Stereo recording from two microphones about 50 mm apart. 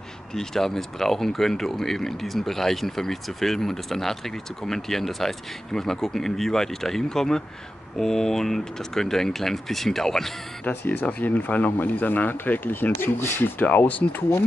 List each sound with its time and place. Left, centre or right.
0.3 s speech: centre
10.6 s speech: left